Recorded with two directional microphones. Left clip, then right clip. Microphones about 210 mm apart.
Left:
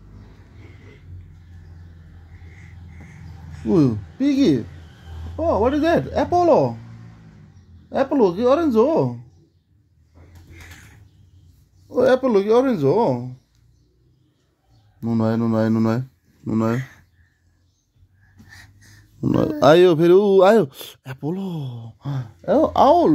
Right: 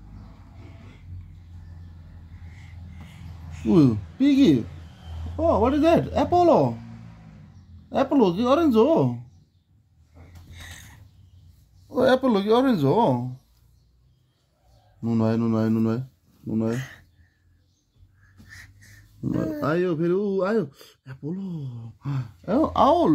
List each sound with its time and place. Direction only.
3.6 s speech: centre (ahead or behind)
7.9 s speech: centre (ahead or behind)
11.9 s speech: centre (ahead or behind)
15.0 s speech: 15° left (ahead or behind)
15.5 s speech: 35° left (ahead or behind)
16.4 s speech: 55° left (ahead or behind)
18.5 s a sound: 10° left (ahead or behind)
19.2 s speech: 40° left (ahead or behind)
22.0 s speech: 10° left (ahead or behind)